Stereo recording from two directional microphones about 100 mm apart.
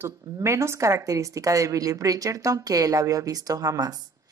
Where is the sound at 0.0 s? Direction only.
30° right (ahead or behind).